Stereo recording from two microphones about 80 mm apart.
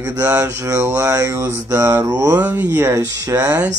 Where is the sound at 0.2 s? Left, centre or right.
Right.